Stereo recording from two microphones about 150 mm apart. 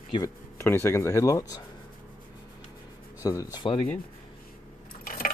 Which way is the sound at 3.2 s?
25° left (ahead or behind).